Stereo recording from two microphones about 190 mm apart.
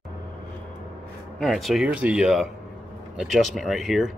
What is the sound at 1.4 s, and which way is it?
Speech, centre (ahead or behind).